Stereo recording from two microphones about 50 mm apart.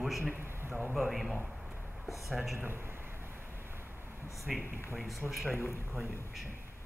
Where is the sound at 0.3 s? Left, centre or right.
Right.